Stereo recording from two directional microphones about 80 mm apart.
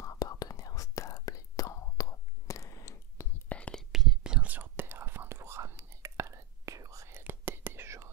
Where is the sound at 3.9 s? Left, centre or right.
Centre; by 8.1 s right.